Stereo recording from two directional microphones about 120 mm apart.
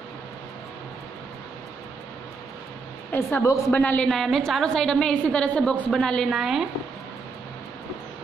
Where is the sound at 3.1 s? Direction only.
20° left (ahead or behind).